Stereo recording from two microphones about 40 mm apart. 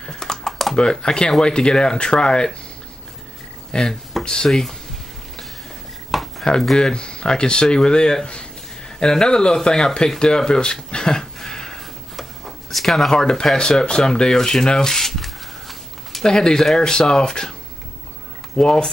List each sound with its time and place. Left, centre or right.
0.1 s typing: centre
0.5 s computer keyboard: centre
0.7 s speech: centre
3.7 s speech: left
4.5 s speech: centre
6.1 s a sound: centre
6.8 s speech: left
11.3 s a sound: centre
12.2 s a sound: centre
13.1 s speech: centre
16.3 s speech: centre
18.6 s speech: centre